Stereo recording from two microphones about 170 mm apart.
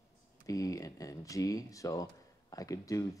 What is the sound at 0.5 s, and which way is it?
A man's voice, 20° left (ahead or behind).